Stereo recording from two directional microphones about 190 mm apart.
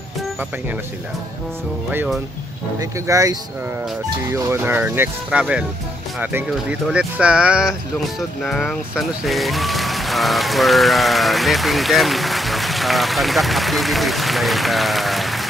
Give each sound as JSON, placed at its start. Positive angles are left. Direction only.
{"t": 2.8, "sound": "speech", "side_deg": -15}